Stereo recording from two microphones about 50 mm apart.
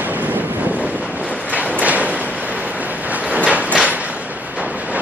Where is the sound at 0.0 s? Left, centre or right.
Right.